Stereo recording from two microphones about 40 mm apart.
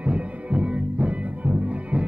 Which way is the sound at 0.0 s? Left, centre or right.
Right.